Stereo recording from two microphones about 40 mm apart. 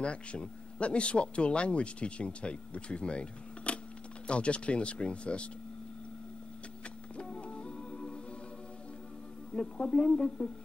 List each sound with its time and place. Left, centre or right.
0.0 s speech: left
7.2 s music: left
9.5 s speech: left